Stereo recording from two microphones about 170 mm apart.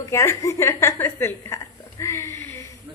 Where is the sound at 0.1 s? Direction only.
15° left (ahead or behind).